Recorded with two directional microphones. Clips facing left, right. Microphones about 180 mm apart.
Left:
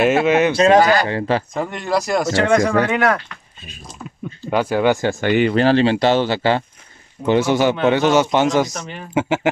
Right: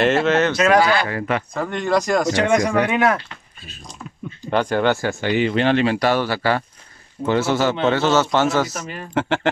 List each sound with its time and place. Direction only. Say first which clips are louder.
0.0 s a man's voice: left 2 dB; 10° left (ahead or behind)
0.7 s speech: left 3 dB; 45° left (ahead or behind)
1.0 s speech: left 3 dB; 30° left (ahead or behind)
1.6 s speech: right 1 dB; 5° left (ahead or behind)
2.2 s speech: left 2 dB; 15° right (ahead or behind)
4.5 s a man's voice: left 2 dB; 5° left (ahead or behind)
5.2 s speech: left 3 dB; 55° left (ahead or behind)
5.6 s a man's voice: left 2 dB; 35° left (ahead or behind); by 8.6 s 15° left (ahead or behind)
8.6 s speech: even; 5° right (ahead or behind)
9.1 s a man's voice: left 2 dB; 10° left (ahead or behind)